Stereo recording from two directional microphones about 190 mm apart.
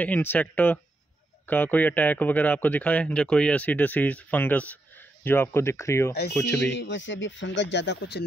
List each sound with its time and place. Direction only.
0.0 s a man's voice: 10° left (ahead or behind)
6.6 s speech: 70° left (ahead or behind)